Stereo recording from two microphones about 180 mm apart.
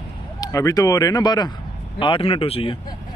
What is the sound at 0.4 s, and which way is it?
Speech, 20° left (ahead or behind).